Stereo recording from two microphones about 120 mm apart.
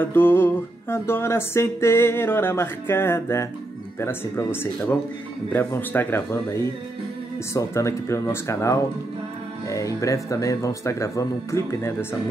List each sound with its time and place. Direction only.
0.0 s music: 15° left (ahead or behind)